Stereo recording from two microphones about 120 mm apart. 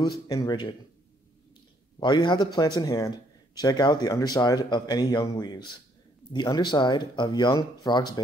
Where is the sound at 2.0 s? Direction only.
40° left (ahead or behind).